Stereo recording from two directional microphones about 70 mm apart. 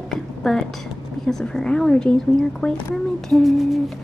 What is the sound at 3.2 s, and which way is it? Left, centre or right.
Humming, centre.